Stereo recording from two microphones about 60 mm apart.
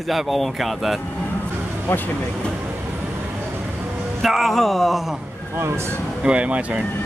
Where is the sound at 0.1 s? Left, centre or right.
Centre.